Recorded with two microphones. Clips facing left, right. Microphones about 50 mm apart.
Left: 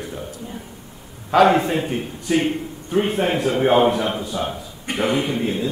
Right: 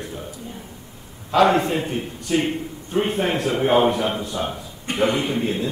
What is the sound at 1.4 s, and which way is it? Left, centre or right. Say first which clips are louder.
A man's voice: left 2 dB; centre.